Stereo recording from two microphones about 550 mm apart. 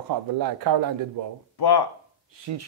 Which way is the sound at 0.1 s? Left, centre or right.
Right.